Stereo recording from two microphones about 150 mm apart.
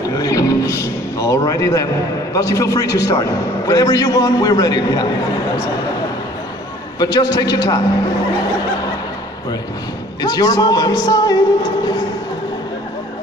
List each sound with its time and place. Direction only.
0.2 s music: 25° left (ahead or behind)
2.3 s a man's voice: 20° left (ahead or behind)
7.0 s a man's voice: 25° left (ahead or behind)
10.2 s a man's voice: 25° left (ahead or behind)